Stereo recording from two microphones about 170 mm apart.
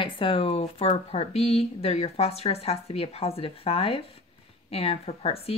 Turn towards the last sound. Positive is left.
turn(degrees=35)  # may be behind; listen again after turning